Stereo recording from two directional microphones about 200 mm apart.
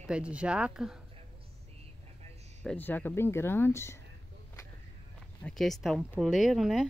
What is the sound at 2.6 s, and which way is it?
Speech, 5° left (ahead or behind).